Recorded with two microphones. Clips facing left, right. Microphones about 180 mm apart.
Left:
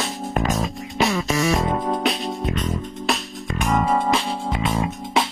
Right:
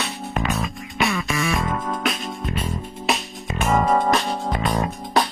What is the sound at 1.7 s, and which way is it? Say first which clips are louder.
Music: left 4 dB; 20° left (ahead or behind).